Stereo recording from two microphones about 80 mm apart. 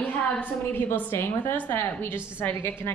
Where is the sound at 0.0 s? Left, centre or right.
Centre.